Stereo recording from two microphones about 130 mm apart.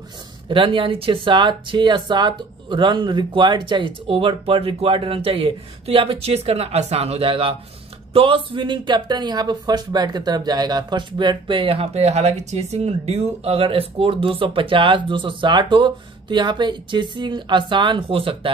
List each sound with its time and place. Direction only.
0.5 s speech: 40° right (ahead or behind)